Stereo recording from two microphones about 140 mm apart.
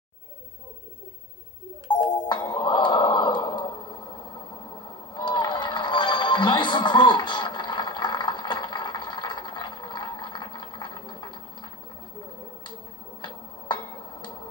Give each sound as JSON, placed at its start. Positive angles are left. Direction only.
{"t": 1.9, "sound": "music", "side_deg": 30}
{"t": 13.2, "sound": "tick-tock", "side_deg": 30}